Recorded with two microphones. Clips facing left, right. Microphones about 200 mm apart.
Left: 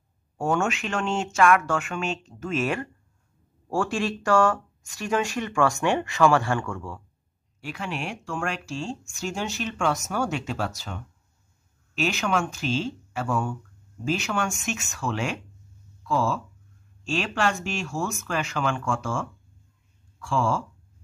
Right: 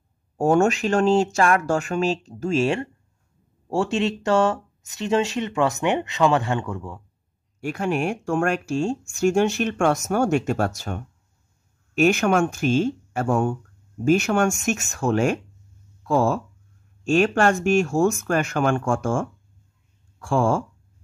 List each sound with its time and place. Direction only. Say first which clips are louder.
0.4 s speech: right 7 dB; 40° right (ahead or behind); by 7.0 s 20° right (ahead or behind)
7.6 s speech: right 9 dB; 50° right (ahead or behind)